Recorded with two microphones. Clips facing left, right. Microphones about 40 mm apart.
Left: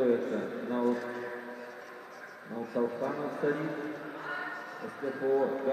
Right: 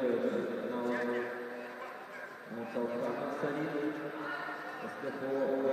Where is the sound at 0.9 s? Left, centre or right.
Right.